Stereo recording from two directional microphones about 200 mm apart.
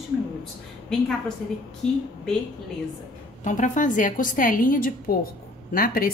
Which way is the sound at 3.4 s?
40° left (ahead or behind).